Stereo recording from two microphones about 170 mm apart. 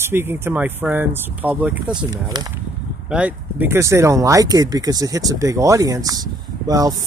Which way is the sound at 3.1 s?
10° right (ahead or behind).